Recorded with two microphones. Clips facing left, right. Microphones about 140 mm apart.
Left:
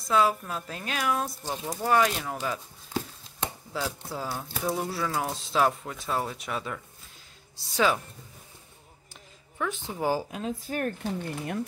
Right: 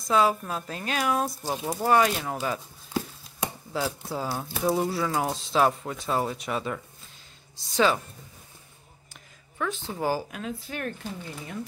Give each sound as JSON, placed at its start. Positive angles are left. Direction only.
{"t": 0.1, "sound": "speech", "side_deg": 0}
{"t": 9.6, "sound": "speech", "side_deg": 15}
{"t": 11.1, "sound": "speech", "side_deg": 60}